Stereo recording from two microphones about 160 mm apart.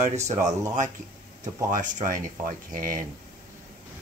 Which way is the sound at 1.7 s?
50° right (ahead or behind).